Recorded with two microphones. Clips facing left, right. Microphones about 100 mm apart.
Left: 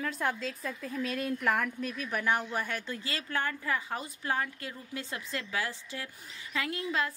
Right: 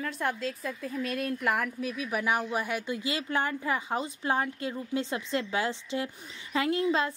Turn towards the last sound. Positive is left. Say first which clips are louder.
# right 6 dB
turn(degrees=-25)  # may be behind; listen again after turning